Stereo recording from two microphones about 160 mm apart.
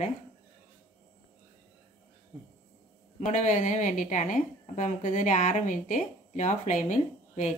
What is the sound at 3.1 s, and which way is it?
A woman's voice, 50° left (ahead or behind).